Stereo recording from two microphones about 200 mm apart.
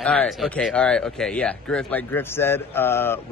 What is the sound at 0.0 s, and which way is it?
Speech, 5° left (ahead or behind).